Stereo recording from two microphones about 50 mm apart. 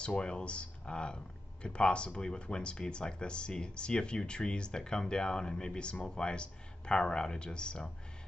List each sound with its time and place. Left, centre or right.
0.0 s speech: centre